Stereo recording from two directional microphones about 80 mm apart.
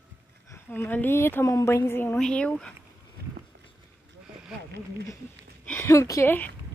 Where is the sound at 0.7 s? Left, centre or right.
Left.